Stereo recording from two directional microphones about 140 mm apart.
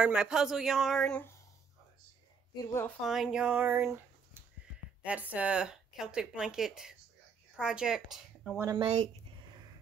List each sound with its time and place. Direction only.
0.0 s speech: 5° right (ahead or behind)
2.5 s speech: 25° left (ahead or behind)
3.0 s a woman's voice: centre (ahead or behind)
8.7 s speech: 40° right (ahead or behind)